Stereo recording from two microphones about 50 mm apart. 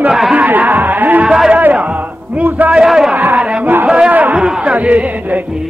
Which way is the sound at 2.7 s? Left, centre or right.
Centre.